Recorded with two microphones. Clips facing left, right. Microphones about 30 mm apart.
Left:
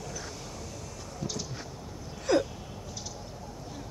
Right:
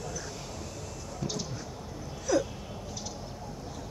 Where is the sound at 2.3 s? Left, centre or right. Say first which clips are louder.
Left 2 dB; left.